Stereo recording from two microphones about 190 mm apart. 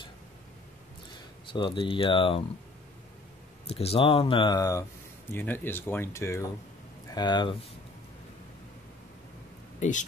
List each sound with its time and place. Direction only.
1.5 s speech: 25° left (ahead or behind)
3.6 s speech: 30° left (ahead or behind)
9.8 s speech: 40° left (ahead or behind)